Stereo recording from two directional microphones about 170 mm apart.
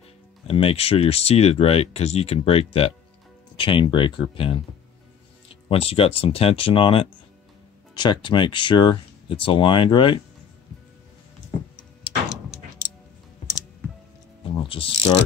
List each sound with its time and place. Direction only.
0.5 s speech: 35° left (ahead or behind)
14.4 s speech: 30° left (ahead or behind)